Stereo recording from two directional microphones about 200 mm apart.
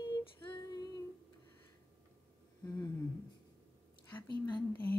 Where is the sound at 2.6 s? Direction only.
15° left (ahead or behind).